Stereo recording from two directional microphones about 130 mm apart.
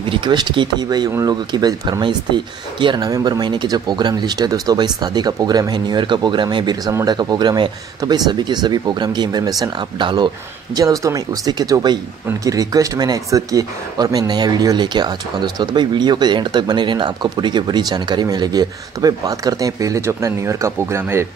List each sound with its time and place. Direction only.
0.1 s speech: 35° right (ahead or behind); by 21.3 s 20° right (ahead or behind)